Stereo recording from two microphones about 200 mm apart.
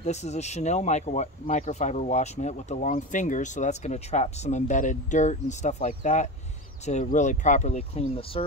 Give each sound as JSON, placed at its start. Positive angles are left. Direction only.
{"t": 0.0, "sound": "speech", "side_deg": 35}